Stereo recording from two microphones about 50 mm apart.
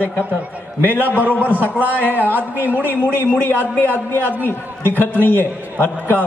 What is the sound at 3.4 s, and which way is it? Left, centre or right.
A man's voice, left.